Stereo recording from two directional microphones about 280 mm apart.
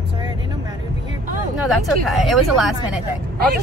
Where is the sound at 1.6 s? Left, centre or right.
Centre.